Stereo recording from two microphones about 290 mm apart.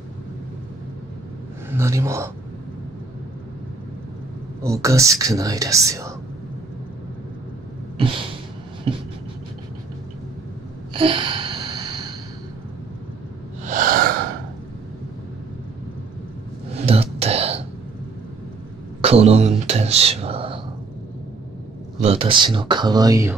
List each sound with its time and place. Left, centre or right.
1.7 s speech: centre
4.6 s speech: centre
8.9 s a sound: centre
10.9 s gasp: centre
13.7 s wheeze: right
16.7 s a sound: right
18.9 s speech: right
22.0 s speech: centre